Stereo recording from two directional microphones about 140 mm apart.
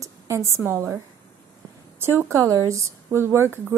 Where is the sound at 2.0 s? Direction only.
20° right (ahead or behind).